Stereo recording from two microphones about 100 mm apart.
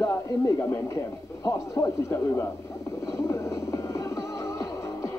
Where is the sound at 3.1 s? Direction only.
30° left (ahead or behind).